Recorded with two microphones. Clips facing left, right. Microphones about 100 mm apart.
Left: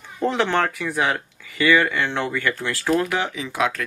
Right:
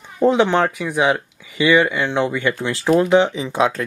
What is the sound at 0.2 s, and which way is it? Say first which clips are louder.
Speech: right 6 dB; 15° right (ahead or behind).